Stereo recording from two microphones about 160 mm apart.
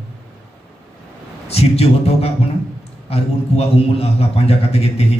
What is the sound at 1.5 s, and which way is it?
A man's voice, 40° left (ahead or behind).